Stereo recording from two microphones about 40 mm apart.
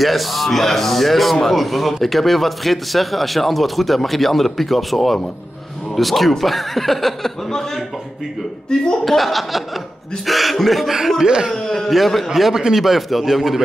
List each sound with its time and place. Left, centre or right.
0.0 s a man's voice: centre
8.6 s speech: centre
9.0 s a man's voice: centre
11.2 s speech: centre
11.5 s a man's voice: centre
12.5 s speech: centre
12.8 s a man's voice: centre